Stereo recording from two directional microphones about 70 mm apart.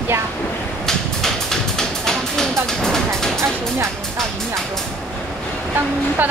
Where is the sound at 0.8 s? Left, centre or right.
Centre.